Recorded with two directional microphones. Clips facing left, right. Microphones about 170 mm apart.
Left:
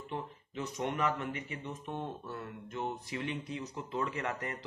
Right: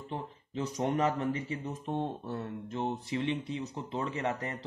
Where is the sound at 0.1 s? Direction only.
35° right (ahead or behind).